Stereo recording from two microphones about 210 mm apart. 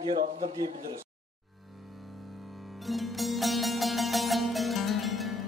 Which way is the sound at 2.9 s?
Centre (ahead or behind).